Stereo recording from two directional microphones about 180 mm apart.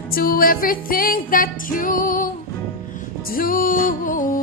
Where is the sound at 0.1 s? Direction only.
55° left (ahead or behind).